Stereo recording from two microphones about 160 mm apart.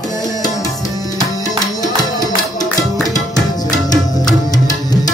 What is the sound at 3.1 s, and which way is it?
Tabla, 20° left (ahead or behind).